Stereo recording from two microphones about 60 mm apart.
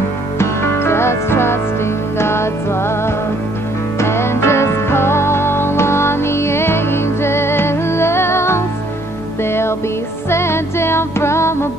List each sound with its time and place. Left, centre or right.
0.4 s music: left
4.0 s music: left